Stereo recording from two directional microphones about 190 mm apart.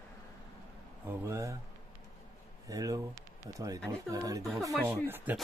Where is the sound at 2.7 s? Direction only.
20° right (ahead or behind).